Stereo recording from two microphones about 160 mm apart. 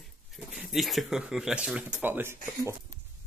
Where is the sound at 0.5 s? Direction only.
Centre (ahead or behind).